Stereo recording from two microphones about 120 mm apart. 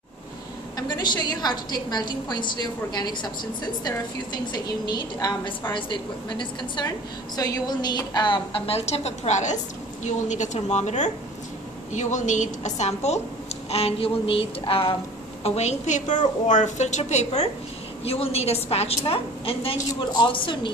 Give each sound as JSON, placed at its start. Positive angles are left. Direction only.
{"t": 0.7, "sound": "a woman's voice", "side_deg": 35}
{"t": 4.6, "sound": "a woman's voice", "side_deg": 35}
{"t": 11.9, "sound": "a woman's voice", "side_deg": 90}
{"t": 15.4, "sound": "a woman's voice", "side_deg": 65}
{"t": 18.0, "sound": "a woman's voice", "side_deg": 60}
{"t": 19.9, "sound": "a woman's voice", "side_deg": 35}